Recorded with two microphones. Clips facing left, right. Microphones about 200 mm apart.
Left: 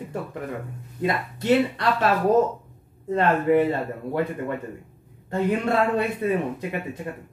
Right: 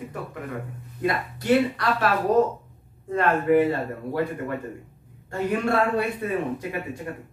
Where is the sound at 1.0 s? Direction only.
25° left (ahead or behind).